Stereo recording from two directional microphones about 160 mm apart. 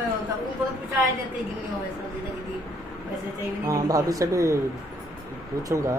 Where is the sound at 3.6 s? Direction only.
20° right (ahead or behind).